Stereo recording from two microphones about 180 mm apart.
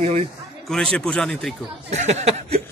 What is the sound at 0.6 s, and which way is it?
Speech, 5° left (ahead or behind).